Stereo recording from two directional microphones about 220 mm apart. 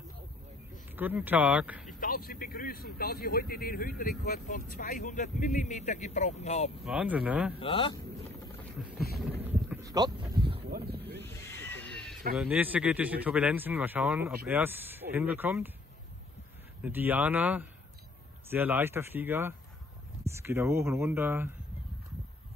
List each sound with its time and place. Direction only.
0.9 s a man's voice: 10° right (ahead or behind)
2.0 s speech: 40° left (ahead or behind)
6.8 s speech: 5° right (ahead or behind)
7.5 s speech: 25° left (ahead or behind)
9.4 s a sound: 10° right (ahead or behind)
10.7 s boat: 45° right (ahead or behind)
11.1 s a sound: 10° left (ahead or behind)
12.4 s a man's voice: 5° right (ahead or behind)
16.8 s a man's voice: 10° right (ahead or behind)